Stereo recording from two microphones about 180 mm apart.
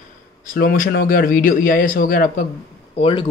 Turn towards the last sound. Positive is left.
turn(degrees=30)  # may be behind; listen again after turning